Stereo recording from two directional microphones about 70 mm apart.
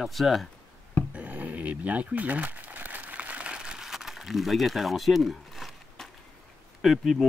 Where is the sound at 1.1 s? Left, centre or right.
Right; by 6.0 s centre.